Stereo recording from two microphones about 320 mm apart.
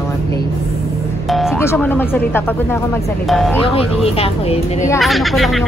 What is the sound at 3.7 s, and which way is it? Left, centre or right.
Speech, centre.